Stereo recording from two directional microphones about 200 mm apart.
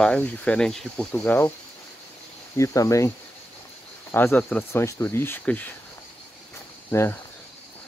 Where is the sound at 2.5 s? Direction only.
15° left (ahead or behind).